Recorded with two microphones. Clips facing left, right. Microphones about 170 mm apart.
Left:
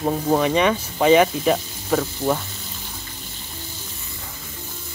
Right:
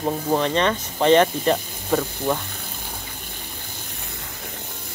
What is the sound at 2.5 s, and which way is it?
Water, 55° right (ahead or behind).